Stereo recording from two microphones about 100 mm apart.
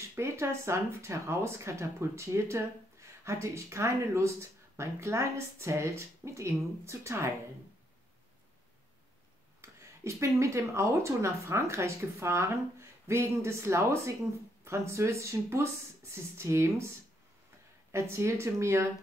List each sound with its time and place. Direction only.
0.1 s speech: 25° right (ahead or behind)
9.6 s a sound: 30° right (ahead or behind)
10.4 s speech: 30° right (ahead or behind)
17.9 s speech: 30° right (ahead or behind)